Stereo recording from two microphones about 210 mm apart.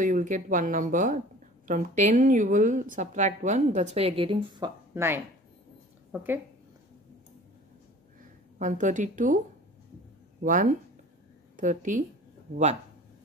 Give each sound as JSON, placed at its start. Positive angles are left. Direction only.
{"t": 0.0, "sound": "a woman's voice", "side_deg": -40}
{"t": 8.5, "sound": "a woman's voice", "side_deg": -35}
{"t": 10.4, "sound": "a woman's voice", "side_deg": -40}